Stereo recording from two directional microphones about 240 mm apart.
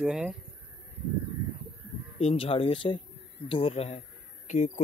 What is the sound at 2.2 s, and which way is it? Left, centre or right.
A man's voice, left.